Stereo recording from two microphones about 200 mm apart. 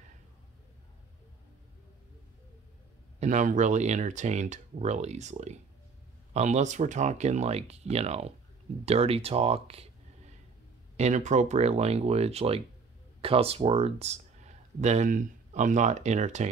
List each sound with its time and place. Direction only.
3.2 s speech: 40° right (ahead or behind)
11.0 s speech: 35° right (ahead or behind)